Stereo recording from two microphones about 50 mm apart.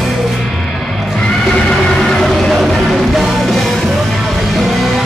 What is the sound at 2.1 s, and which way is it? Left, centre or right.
Music, centre.